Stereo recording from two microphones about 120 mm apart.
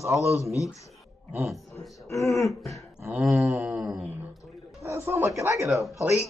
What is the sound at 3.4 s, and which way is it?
Speech, 25° right (ahead or behind).